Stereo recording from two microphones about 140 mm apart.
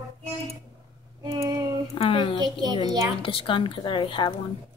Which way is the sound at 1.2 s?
25° right (ahead or behind).